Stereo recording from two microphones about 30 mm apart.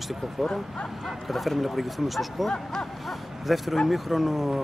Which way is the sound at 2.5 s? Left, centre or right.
Left.